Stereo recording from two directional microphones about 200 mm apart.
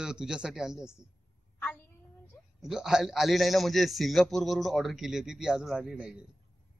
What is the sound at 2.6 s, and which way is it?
A man's voice, centre (ahead or behind).